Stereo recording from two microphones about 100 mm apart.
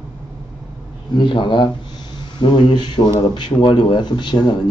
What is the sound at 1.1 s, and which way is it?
Speech, 55° left (ahead or behind).